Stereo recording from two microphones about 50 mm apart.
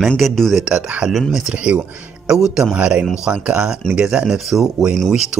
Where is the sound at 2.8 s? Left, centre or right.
Right.